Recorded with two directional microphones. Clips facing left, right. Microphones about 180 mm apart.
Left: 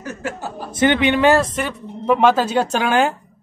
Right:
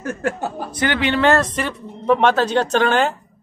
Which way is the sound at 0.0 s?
55° right (ahead or behind).